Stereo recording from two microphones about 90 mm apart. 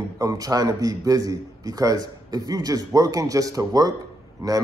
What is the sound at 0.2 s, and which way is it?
A man's voice, 40° right (ahead or behind).